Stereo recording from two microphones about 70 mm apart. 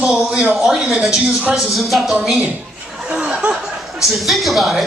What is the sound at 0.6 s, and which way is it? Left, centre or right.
A man's voice, centre.